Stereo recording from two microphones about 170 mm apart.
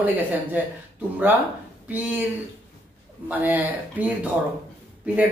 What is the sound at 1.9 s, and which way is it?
Speech, 10° right (ahead or behind).